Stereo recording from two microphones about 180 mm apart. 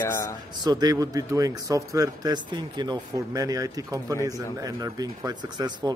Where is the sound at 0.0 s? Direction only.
15° left (ahead or behind).